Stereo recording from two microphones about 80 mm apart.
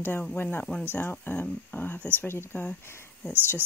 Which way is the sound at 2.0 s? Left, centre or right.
Right.